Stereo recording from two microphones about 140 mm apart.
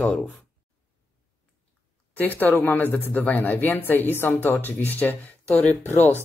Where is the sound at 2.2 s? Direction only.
15° left (ahead or behind).